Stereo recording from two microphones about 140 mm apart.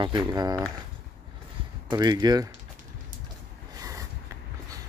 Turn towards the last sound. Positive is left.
turn(degrees=-25)  # may be behind; listen again after turning